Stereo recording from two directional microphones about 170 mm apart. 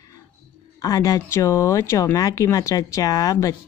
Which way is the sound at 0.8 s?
20° left (ahead or behind).